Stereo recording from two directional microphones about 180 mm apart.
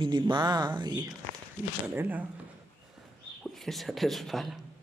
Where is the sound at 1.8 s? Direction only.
10° right (ahead or behind).